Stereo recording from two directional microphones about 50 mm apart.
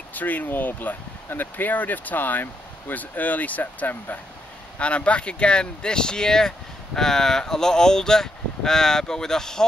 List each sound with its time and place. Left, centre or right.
0.1 s speech: left
4.7 s speech: left